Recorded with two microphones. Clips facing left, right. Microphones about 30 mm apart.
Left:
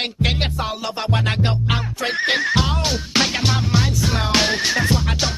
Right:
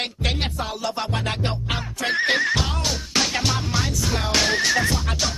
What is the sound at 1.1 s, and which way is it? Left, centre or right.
Music, centre.